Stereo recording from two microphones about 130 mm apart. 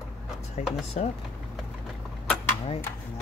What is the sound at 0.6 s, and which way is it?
Speech, 60° left (ahead or behind).